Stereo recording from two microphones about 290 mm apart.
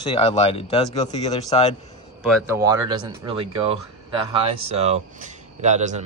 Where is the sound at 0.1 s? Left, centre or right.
Left.